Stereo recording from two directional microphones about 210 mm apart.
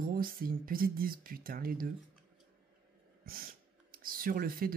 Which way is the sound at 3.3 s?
45° right (ahead or behind).